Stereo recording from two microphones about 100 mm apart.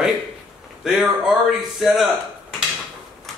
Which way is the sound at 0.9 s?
5° right (ahead or behind).